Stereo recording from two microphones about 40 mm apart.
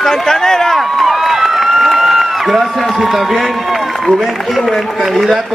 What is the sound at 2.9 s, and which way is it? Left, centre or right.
Speech, centre.